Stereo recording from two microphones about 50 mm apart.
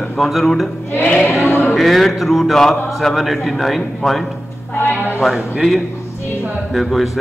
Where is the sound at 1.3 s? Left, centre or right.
Left.